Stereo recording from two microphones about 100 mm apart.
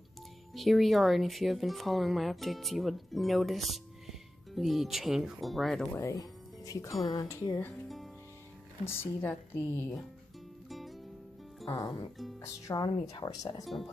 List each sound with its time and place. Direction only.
0.6 s speech: centre (ahead or behind)
5.9 s speech: 30° left (ahead or behind)
8.8 s a woman's voice: 25° left (ahead or behind)
10.7 s music: centre (ahead or behind)
11.6 s speech: 35° left (ahead or behind)